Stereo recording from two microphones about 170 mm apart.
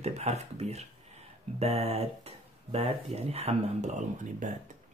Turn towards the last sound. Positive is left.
turn(degrees=-45)  # may be behind; listen again after turning